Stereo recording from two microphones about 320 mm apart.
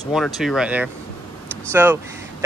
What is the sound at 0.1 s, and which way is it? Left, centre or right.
Speech, centre.